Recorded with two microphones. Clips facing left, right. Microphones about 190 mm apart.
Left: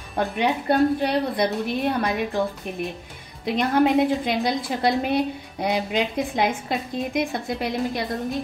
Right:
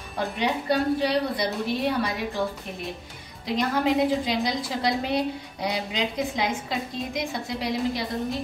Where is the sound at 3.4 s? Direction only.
55° left (ahead or behind).